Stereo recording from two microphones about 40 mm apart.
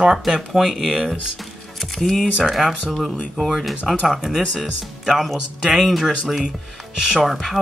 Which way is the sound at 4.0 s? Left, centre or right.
Centre.